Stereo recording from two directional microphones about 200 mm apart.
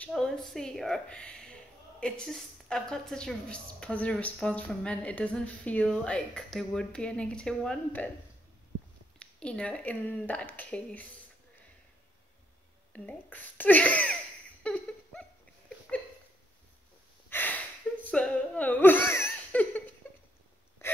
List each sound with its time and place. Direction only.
0.0 s a woman's voice: centre (ahead or behind)
9.2 s speech: 5° left (ahead or behind)
12.9 s speech: 5° left (ahead or behind)
14.6 s a sound: 5° left (ahead or behind)
17.3 s gasp: 10° left (ahead or behind)
18.0 s laughter: 5° left (ahead or behind)
20.8 s gasp: 15° left (ahead or behind)